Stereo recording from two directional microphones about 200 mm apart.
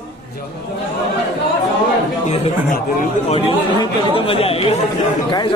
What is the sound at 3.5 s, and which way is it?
Speech, 25° left (ahead or behind).